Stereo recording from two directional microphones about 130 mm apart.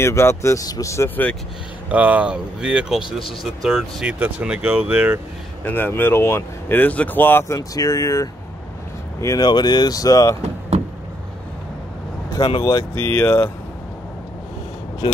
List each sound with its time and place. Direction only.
0.0 s speech: 20° left (ahead or behind)
1.9 s speech: 10° right (ahead or behind)
5.6 s speech: 15° left (ahead or behind)
12.4 s speech: 35° left (ahead or behind)
12.9 s speech: 15° left (ahead or behind)